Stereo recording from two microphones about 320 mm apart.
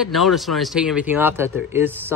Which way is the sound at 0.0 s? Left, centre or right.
Centre.